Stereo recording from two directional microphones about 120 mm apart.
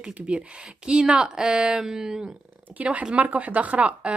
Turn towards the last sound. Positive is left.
turn(degrees=-10)  # may be behind; listen again after turning